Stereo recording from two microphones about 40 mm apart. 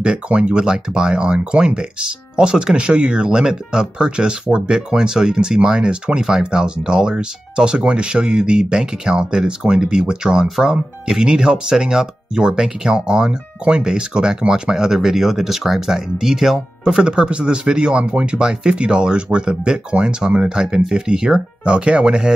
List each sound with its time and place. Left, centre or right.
0.0 s speech: right
17.0 s speech: right
18.4 s speech: centre